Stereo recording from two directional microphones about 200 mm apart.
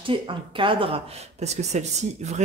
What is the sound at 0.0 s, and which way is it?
Speech, 25° right (ahead or behind).